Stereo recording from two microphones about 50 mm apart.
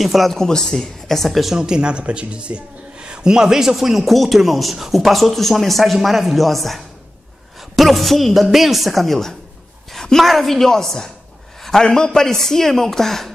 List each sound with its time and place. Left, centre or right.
0.0 s a man's voice: centre
0.4 s speech: centre
1.5 s a man's voice: centre